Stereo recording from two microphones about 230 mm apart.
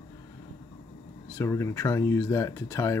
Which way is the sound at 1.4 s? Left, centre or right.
Centre.